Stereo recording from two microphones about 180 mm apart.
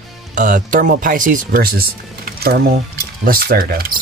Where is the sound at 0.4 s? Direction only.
45° right (ahead or behind).